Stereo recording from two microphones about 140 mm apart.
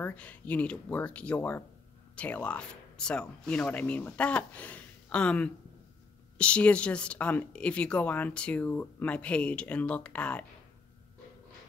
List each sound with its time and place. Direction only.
0.0 s speech: 10° left (ahead or behind)